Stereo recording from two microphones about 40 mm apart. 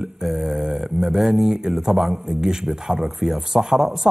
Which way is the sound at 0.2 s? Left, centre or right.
Centre.